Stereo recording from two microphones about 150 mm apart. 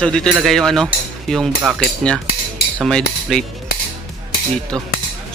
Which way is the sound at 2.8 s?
5° left (ahead or behind).